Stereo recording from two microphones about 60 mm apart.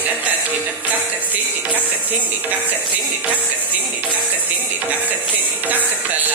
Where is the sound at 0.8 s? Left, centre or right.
Right.